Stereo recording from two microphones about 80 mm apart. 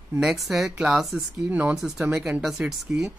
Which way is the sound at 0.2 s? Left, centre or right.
Centre.